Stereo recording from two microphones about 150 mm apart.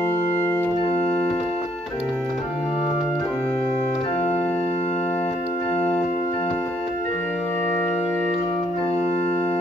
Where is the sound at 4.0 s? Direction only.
45° left (ahead or behind).